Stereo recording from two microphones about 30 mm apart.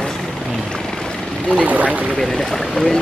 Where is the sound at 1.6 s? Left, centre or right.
Right.